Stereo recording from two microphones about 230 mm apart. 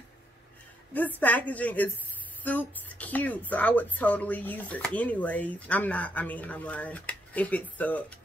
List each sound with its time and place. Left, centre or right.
0.9 s a woman's voice: centre